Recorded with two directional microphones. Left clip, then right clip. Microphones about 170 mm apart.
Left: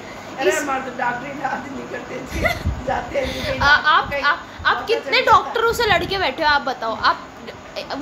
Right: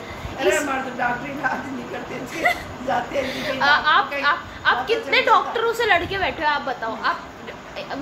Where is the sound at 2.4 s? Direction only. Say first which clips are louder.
Even; 15° left (ahead or behind).